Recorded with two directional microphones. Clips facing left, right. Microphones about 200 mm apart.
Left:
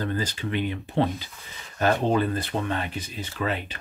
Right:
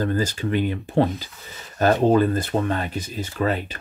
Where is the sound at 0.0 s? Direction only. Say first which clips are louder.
Right 5 dB; 45° right (ahead or behind).